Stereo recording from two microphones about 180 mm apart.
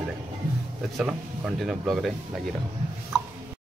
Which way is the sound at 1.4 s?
Centre (ahead or behind).